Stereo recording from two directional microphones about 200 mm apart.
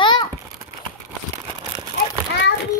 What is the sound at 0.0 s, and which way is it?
Babbling, 20° left (ahead or behind).